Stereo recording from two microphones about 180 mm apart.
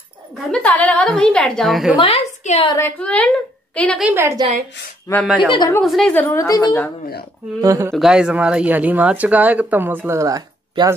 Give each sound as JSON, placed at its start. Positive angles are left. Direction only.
{"t": 0.4, "sound": "a woman's voice", "side_deg": 5}
{"t": 2.0, "sound": "a woman's voice", "side_deg": 35}
{"t": 3.0, "sound": "a woman's voice", "side_deg": 5}
{"t": 4.0, "sound": "speech", "side_deg": -10}
{"t": 5.1, "sound": "a woman's voice", "side_deg": 20}
{"t": 5.8, "sound": "a woman's voice", "side_deg": 0}
{"t": 7.6, "sound": "speech", "side_deg": -20}
{"t": 7.9, "sound": "speech", "side_deg": 0}